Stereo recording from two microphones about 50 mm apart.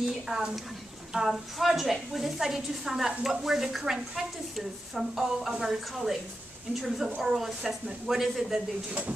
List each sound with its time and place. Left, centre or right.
0.0 s a woman's voice: centre